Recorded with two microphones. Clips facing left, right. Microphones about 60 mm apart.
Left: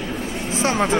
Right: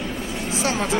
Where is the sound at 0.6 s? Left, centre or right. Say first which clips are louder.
Left 4 dB; left.